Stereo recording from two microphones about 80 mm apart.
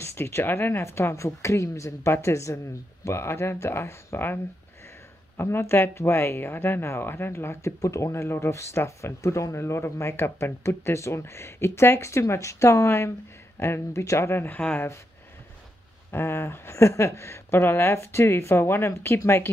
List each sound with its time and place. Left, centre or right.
0.0 s speech: left
5.4 s speech: left
16.1 s speech: left